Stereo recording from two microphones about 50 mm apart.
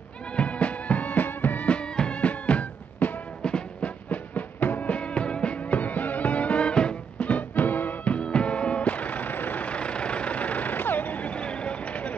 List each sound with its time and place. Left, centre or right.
0.3 s music: left
1.7 s music: centre
3.4 s music: centre
4.1 s music: left